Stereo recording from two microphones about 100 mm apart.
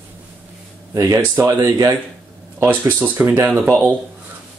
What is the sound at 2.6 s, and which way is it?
Speech, 20° right (ahead or behind).